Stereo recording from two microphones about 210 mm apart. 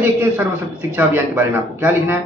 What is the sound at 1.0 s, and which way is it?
A man's voice, 10° right (ahead or behind).